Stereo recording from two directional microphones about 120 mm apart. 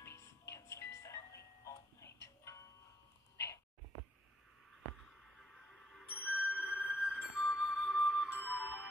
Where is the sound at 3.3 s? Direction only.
25° left (ahead or behind).